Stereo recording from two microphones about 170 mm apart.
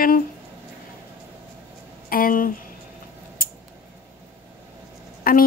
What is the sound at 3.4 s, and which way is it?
Scissors, 60° left (ahead or behind).